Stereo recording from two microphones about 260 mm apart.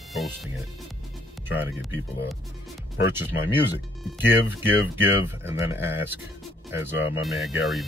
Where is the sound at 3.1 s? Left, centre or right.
Centre.